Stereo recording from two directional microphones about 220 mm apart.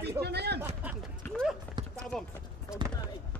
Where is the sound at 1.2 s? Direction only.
5° left (ahead or behind).